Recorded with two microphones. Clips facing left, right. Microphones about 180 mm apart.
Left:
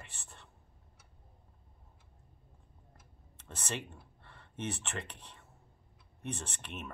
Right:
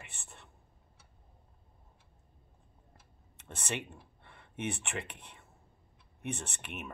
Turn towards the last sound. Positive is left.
turn(degrees=-10)  # may be behind; listen again after turning